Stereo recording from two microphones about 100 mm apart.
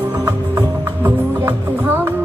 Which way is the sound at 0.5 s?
25° right (ahead or behind).